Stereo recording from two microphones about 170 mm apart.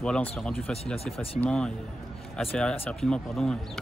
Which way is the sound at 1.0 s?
35° left (ahead or behind).